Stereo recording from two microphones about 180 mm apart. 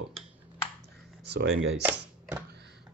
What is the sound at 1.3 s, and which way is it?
Speech, 80° right.